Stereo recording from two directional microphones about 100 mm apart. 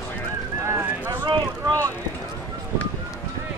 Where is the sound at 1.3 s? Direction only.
40° right (ahead or behind).